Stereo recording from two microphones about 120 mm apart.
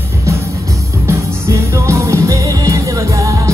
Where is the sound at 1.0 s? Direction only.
25° right (ahead or behind).